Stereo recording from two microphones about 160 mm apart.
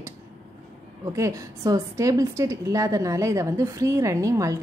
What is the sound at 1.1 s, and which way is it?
A woman's voice, 20° right (ahead or behind).